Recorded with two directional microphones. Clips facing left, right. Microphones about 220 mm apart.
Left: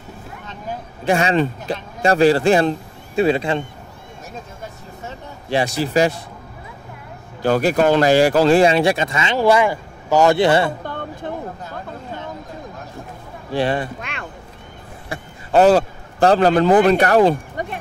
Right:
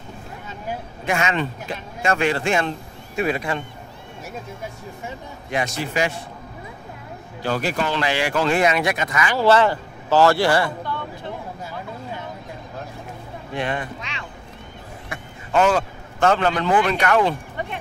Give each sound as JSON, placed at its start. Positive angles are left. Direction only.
{"t": 1.0, "sound": "speech", "side_deg": 35}
{"t": 5.5, "sound": "speech", "side_deg": 35}
{"t": 7.4, "sound": "speech", "side_deg": 45}
{"t": 9.4, "sound": "speech", "side_deg": 10}
{"t": 13.5, "sound": "speech", "side_deg": 30}
{"t": 15.0, "sound": "a man's voice", "side_deg": 35}